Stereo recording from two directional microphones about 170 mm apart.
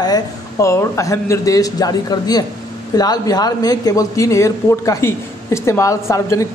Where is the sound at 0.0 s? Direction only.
20° left (ahead or behind).